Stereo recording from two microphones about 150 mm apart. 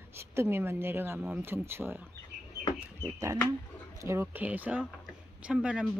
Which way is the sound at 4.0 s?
20° right (ahead or behind).